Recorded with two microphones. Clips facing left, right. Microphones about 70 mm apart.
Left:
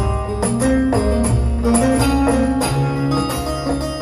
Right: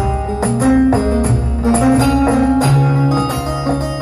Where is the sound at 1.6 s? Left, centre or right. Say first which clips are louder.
Right 3 dB; right.